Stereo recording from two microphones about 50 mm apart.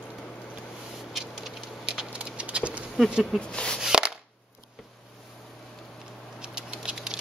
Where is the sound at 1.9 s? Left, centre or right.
Centre.